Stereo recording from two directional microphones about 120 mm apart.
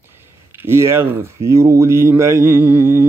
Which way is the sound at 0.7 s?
20° right (ahead or behind).